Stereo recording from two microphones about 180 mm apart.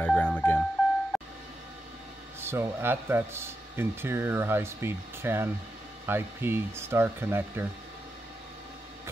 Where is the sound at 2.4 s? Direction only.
10° right (ahead or behind).